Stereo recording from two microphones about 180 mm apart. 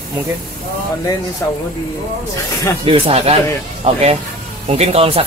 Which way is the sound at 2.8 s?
30° right (ahead or behind).